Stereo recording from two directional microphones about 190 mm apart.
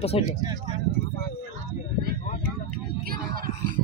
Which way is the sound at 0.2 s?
30° left (ahead or behind).